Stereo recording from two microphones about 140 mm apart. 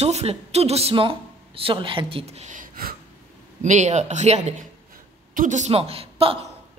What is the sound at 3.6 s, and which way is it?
A man's voice, 60° right (ahead or behind).